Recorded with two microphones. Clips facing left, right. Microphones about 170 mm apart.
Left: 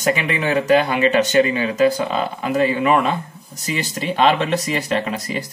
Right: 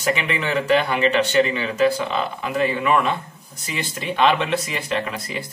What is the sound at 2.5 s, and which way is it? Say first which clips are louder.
Speech: left 3 dB; 45° left (ahead or behind).